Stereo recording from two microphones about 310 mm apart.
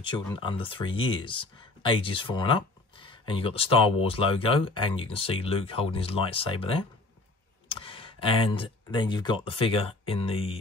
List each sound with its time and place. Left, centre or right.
0.0 s speech: centre